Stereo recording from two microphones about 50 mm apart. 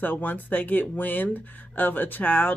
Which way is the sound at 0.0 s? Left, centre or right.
Left.